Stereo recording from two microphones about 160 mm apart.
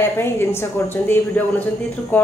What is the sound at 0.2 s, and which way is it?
A woman's voice, 15° left (ahead or behind).